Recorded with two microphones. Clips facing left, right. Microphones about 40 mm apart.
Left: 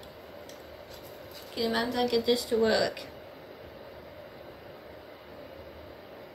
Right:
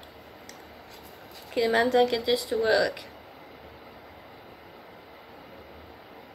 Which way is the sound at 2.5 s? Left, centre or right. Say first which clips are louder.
Right 3 dB; right.